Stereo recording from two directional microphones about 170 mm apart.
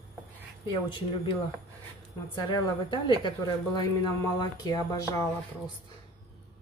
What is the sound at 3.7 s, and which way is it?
Speech, 25° left (ahead or behind).